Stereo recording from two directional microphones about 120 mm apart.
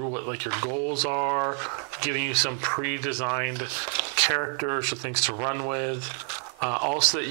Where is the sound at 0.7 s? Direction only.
25° right (ahead or behind).